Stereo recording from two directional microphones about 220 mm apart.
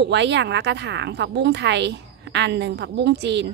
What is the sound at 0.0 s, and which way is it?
A woman's voice, 50° right (ahead or behind).